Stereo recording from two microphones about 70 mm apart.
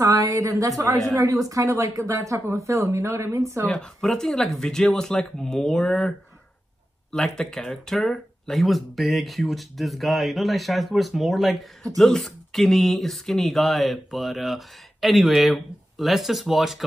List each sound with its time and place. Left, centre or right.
0.0 s a woman's voice: right
3.7 s speech: centre